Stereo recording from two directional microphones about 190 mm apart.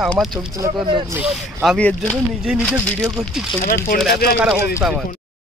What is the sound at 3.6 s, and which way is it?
Speech, 50° left (ahead or behind).